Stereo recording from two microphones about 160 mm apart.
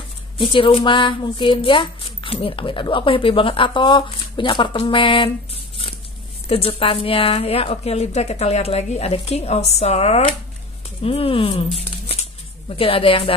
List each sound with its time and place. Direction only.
0.4 s speech: 35° left (ahead or behind)
6.5 s speech: 35° left (ahead or behind)
12.1 s shuffling cards: 35° left (ahead or behind)